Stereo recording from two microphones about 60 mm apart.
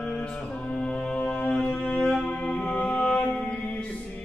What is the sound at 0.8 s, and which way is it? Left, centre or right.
Music, centre.